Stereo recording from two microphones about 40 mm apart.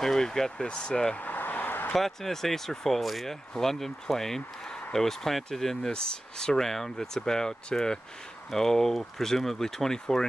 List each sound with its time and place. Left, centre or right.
0.0 s speech: centre
1.1 s a sound: left
2.0 s speech: centre